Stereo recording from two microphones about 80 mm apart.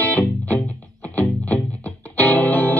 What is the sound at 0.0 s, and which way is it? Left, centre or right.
Music, left.